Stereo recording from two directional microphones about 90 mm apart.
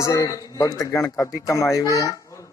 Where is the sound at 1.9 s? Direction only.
35° left (ahead or behind).